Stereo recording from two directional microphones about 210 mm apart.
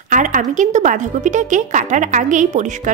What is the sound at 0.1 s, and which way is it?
A woman's voice, 35° right (ahead or behind).